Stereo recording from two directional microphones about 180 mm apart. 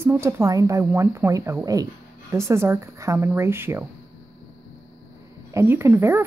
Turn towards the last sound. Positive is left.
turn(degrees=-15)  # may be behind; listen again after turning